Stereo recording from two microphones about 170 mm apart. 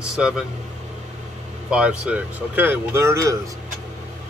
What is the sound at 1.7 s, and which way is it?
Speech, 5° right (ahead or behind).